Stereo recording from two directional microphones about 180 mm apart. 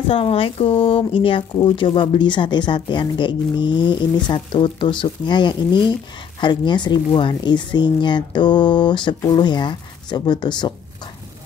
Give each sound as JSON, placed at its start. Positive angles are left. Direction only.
{"t": 0.1, "sound": "speech", "side_deg": 30}